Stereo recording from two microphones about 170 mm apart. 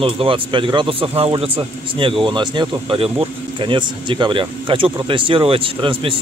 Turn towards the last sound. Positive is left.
turn(degrees=-30)  # may be behind; listen again after turning